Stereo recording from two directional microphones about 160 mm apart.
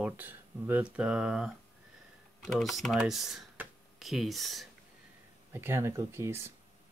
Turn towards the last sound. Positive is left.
turn(degrees=-15)  # may be behind; listen again after turning